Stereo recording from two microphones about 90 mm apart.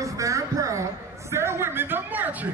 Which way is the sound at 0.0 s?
35° right (ahead or behind).